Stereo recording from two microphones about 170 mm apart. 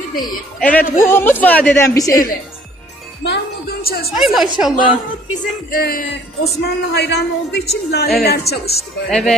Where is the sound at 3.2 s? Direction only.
75° left (ahead or behind).